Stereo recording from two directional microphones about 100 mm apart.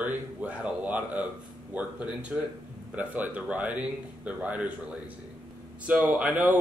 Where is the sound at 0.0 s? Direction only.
15° right (ahead or behind).